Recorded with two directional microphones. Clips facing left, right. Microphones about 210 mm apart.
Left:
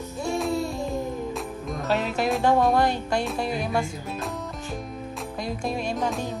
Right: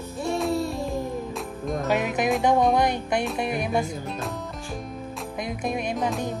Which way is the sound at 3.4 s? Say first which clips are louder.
Right 1 dB; 20° right (ahead or behind).